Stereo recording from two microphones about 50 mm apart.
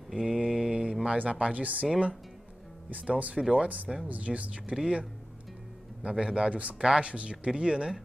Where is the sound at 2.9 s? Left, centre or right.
Right.